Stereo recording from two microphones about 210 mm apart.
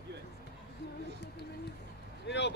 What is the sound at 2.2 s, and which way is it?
Vehicle, 55° left (ahead or behind).